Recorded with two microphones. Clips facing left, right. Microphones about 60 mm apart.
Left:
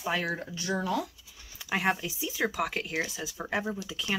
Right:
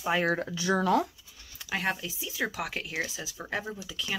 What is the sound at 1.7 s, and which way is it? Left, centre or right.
Speech, centre.